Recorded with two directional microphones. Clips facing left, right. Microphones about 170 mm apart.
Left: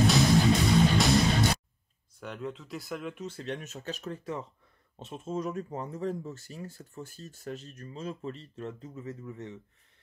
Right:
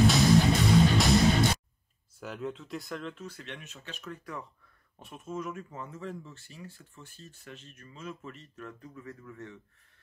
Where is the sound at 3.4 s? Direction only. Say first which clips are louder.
Left 8 dB; 40° left (ahead or behind); by 9.6 s 20° left (ahead or behind).